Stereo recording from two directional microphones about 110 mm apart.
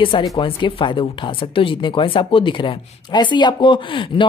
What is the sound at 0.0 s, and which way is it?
Speech, 50° left (ahead or behind).